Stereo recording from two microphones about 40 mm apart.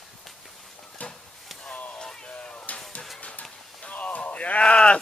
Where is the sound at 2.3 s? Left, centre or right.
Left.